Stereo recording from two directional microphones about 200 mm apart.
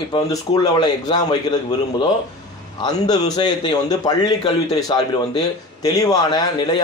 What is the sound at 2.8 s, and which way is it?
A man's voice, 20° left (ahead or behind).